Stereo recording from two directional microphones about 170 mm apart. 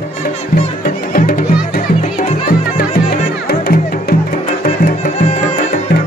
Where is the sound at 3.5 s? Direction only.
65° left (ahead or behind); by 5.4 s 45° left (ahead or behind).